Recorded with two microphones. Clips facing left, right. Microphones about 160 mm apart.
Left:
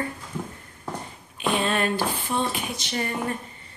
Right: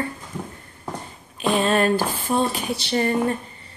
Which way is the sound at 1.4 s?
40° right (ahead or behind).